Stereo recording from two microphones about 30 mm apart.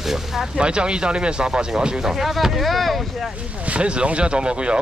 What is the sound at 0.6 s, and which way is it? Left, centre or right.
Speech, right.